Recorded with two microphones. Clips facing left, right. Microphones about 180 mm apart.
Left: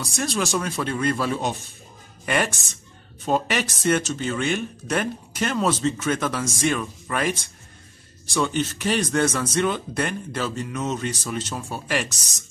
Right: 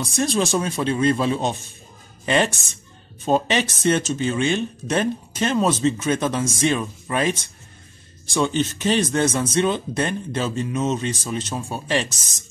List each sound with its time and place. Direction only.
0.0 s speech: 20° right (ahead or behind)